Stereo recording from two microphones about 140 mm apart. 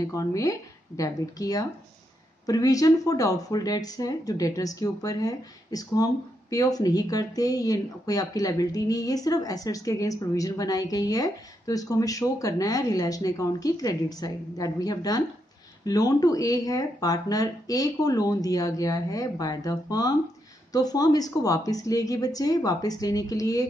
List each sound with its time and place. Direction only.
0.0 s speech: 25° left (ahead or behind)